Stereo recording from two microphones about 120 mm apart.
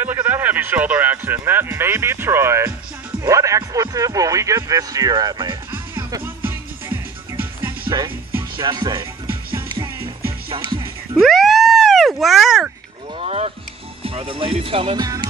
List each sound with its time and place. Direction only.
0.0 s speech: 15° right (ahead or behind); by 5.6 s 35° right (ahead or behind)
6.2 s music: 20° right (ahead or behind)
7.8 s music: 35° right (ahead or behind)
8.4 s speech: 40° right (ahead or behind)
10.5 s speech: 40° right (ahead or behind)
11.1 s a sound: centre (ahead or behind)
13.2 s speech: 60° right (ahead or behind)
14.0 s speech: 45° right (ahead or behind)
15.0 s speech: 35° right (ahead or behind)